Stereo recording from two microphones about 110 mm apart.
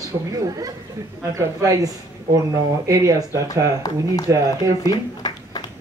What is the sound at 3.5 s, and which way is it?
Speech, 35° left (ahead or behind).